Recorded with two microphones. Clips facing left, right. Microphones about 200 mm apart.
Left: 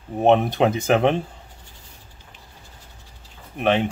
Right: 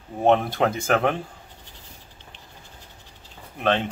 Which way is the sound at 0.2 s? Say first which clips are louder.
Left 3 dB; 20° left (ahead or behind).